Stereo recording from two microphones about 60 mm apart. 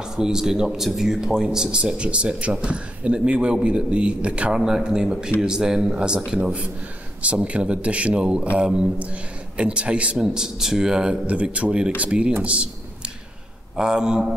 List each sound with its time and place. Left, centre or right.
0.1 s a man's voice: centre
4.6 s a man's voice: centre
7.2 s a man's voice: right
10.2 s a man's voice: centre
12.4 s a sound: centre
13.7 s a man's voice: centre